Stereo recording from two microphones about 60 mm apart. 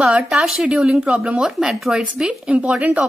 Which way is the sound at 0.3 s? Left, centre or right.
Centre.